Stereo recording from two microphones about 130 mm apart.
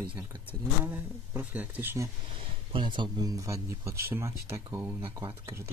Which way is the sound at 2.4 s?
40° right (ahead or behind).